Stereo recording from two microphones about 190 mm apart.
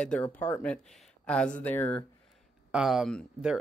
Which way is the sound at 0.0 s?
5° left (ahead or behind).